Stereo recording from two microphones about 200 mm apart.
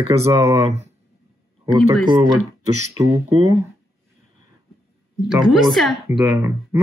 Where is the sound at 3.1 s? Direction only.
30° right (ahead or behind).